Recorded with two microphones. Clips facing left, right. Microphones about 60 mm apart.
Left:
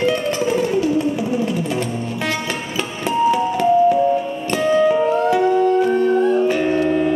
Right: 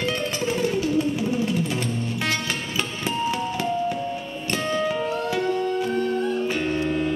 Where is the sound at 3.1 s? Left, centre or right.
Centre.